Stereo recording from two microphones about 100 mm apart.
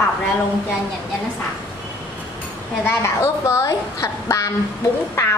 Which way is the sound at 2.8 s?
30° left (ahead or behind).